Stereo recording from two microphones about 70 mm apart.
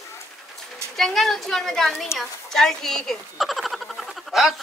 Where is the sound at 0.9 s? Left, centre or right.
Centre.